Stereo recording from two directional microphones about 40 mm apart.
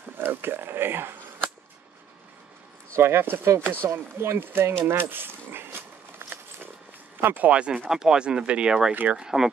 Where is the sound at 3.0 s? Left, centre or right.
Right.